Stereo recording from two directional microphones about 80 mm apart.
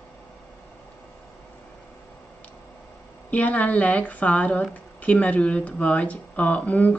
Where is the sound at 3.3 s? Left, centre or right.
Centre.